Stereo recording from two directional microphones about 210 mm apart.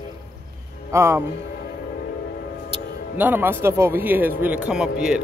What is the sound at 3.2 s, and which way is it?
Speech, 10° right (ahead or behind).